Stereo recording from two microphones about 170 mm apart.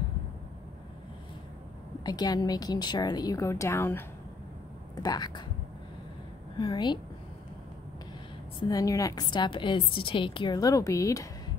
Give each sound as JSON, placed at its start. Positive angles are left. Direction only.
{"t": 2.0, "sound": "a woman's voice", "side_deg": 20}
{"t": 5.0, "sound": "a woman's voice", "side_deg": 25}
{"t": 6.6, "sound": "a woman's voice", "side_deg": 25}
{"t": 8.5, "sound": "a woman's voice", "side_deg": 20}